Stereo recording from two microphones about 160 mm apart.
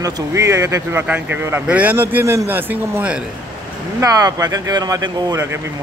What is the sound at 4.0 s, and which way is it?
Speech, 20° right (ahead or behind).